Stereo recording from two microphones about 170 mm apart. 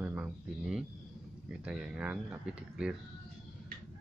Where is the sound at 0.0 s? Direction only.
10° right (ahead or behind).